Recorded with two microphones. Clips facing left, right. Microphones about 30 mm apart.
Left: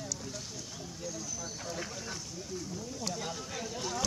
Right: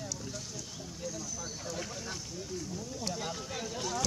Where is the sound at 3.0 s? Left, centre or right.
Centre.